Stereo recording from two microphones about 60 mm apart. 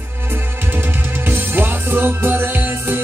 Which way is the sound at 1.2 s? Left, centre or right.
Right.